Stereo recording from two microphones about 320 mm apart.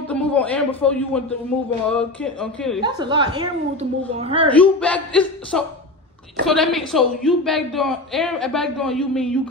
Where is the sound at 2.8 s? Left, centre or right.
Centre.